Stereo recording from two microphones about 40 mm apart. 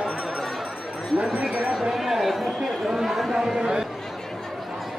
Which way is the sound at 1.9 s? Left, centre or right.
Centre.